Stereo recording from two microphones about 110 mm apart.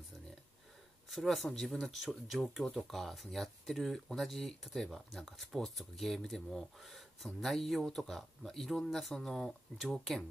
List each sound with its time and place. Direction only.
1.1 s speech: centre (ahead or behind)